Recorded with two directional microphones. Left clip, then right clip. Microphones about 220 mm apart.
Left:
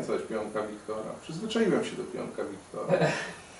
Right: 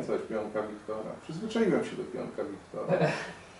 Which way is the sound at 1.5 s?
5° right (ahead or behind).